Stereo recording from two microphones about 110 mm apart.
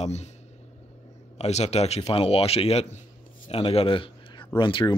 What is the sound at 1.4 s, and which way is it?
Speech, 70° left (ahead or behind).